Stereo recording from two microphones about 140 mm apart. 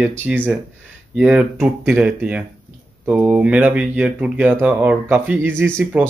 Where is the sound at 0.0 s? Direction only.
15° right (ahead or behind).